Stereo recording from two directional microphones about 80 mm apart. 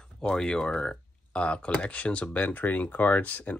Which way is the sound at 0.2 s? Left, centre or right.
Centre.